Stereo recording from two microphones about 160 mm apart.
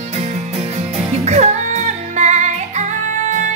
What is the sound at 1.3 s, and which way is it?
Music, 45° right (ahead or behind).